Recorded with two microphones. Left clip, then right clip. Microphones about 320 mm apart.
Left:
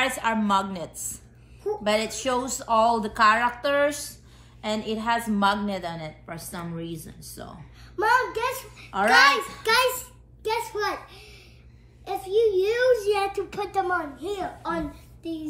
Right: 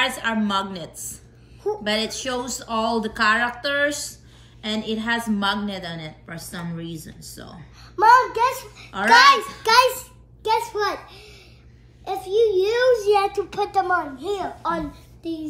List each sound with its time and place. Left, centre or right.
0.0 s a woman's voice: centre
7.9 s a child's voice: centre